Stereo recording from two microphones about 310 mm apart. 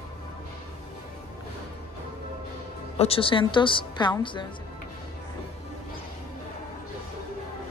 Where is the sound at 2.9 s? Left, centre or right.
Centre.